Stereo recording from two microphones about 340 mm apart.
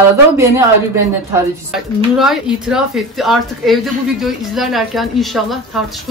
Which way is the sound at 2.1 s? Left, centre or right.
Centre.